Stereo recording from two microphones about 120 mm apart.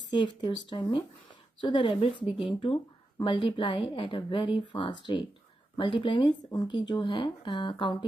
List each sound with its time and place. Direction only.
0.2 s a woman's voice: 40° left (ahead or behind)
6.5 s speech: 30° left (ahead or behind)
6.9 s speech: 45° left (ahead or behind)